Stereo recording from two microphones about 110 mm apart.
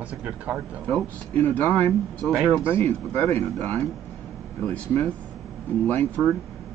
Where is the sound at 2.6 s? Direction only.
20° left (ahead or behind).